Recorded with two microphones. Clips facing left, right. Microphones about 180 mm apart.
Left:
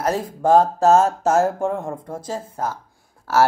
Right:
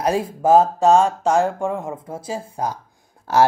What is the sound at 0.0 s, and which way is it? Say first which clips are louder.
Speech: right 1 dB; 10° right (ahead or behind).